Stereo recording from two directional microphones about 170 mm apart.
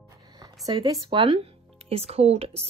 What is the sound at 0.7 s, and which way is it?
A woman's voice, 25° right (ahead or behind).